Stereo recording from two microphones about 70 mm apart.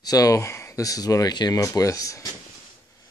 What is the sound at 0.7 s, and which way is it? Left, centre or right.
Speech, left.